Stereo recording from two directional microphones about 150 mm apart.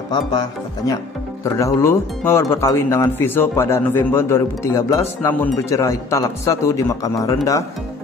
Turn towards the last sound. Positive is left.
turn(degrees=25)  # may be behind; listen again after turning